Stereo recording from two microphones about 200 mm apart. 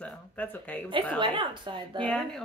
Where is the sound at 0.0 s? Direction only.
10° left (ahead or behind).